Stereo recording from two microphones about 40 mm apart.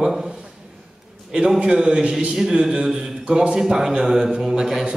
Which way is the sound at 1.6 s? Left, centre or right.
Centre.